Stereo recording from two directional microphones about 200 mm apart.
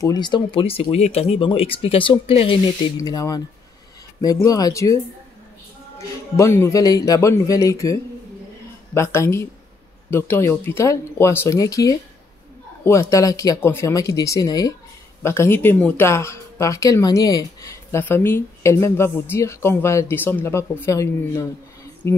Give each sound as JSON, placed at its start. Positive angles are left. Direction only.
{"t": 0.0, "sound": "speech", "side_deg": 20}